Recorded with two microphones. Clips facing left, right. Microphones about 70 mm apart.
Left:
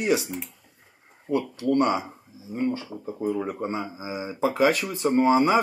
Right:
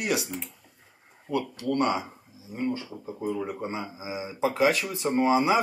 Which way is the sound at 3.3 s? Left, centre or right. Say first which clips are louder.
Left 2 dB; centre.